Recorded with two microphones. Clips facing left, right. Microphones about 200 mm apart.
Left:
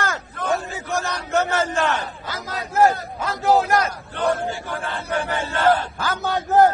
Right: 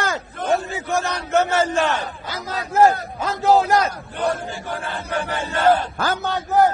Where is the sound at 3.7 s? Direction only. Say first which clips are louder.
Right 2 dB; 25° right (ahead or behind).